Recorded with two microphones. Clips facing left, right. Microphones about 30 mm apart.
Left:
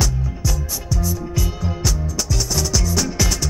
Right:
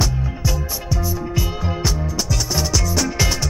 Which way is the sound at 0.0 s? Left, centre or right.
Right.